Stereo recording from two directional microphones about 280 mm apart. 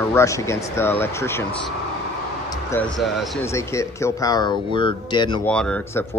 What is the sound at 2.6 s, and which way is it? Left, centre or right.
Speech, centre.